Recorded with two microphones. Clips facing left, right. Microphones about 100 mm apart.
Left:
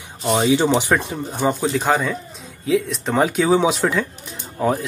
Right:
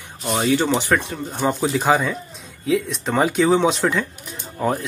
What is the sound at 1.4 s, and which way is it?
Speech, centre (ahead or behind).